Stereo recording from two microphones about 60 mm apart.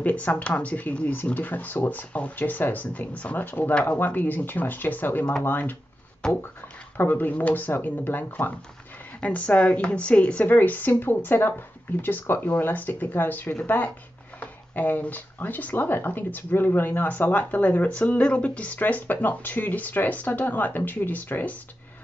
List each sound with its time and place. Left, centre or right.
0.0 s speech: left
3.7 s speech: centre
4.0 s speech: left
6.2 s speech: centre
7.0 s speech: left